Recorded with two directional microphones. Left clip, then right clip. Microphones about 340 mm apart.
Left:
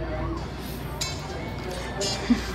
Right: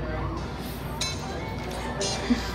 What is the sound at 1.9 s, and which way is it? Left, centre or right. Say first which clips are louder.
Music: left 2 dB; centre.